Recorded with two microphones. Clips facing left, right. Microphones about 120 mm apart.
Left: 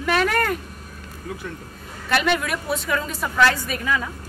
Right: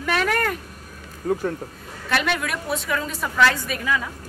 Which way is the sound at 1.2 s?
35° right (ahead or behind).